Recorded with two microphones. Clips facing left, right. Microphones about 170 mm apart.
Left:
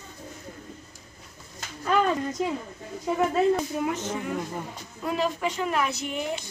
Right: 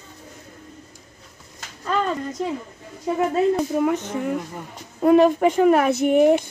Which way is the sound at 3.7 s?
55° right (ahead or behind).